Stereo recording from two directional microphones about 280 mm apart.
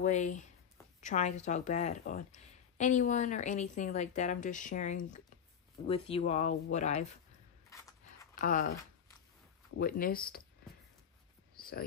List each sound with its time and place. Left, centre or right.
0.0 s a woman's voice: left
8.4 s a woman's voice: left
9.8 s speech: left